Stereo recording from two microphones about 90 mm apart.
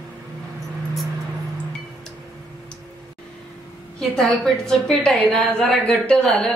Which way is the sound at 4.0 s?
5° left (ahead or behind).